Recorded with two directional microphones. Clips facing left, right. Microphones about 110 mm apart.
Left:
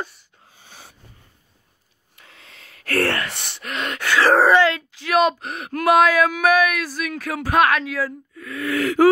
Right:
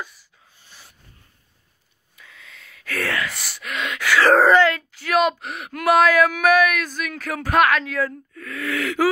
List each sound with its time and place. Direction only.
2.1 s a sound: 55° left (ahead or behind)
3.0 s speech: 30° left (ahead or behind)
3.6 s speech: 40° left (ahead or behind)
4.3 s speech: 15° left (ahead or behind); by 5.9 s 30° left (ahead or behind)
5.9 s speech: 20° left (ahead or behind)